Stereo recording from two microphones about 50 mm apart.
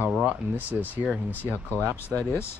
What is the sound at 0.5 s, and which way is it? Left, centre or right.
Speech, right.